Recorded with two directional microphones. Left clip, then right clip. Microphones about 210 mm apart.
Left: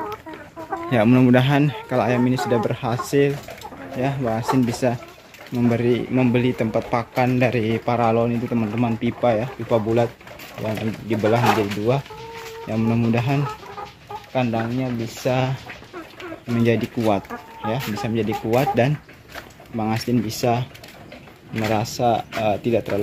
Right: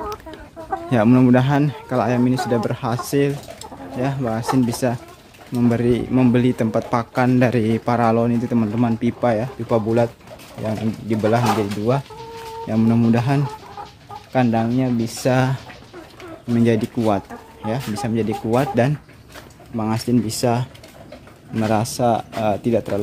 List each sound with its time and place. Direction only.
0.8 s speech: 10° right (ahead or behind); by 15.5 s 25° right (ahead or behind)
16.5 s speech: 10° right (ahead or behind)